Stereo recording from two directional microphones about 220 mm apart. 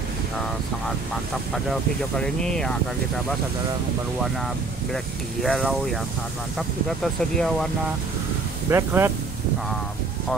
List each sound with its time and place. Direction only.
1.5 s speech: centre (ahead or behind)
4.9 s speech: centre (ahead or behind)
7.0 s speech: centre (ahead or behind)
8.6 s speech: 10° right (ahead or behind)